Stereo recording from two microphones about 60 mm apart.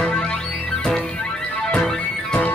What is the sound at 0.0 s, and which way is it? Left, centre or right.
Music, centre.